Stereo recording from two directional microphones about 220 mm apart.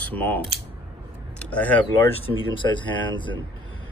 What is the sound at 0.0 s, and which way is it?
Speech, 5° left (ahead or behind).